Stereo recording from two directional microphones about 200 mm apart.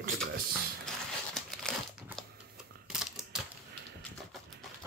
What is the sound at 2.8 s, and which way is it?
Typewriter, 5° right (ahead or behind).